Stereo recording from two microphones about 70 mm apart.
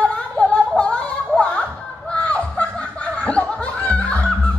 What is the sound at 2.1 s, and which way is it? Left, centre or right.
Snicker, centre.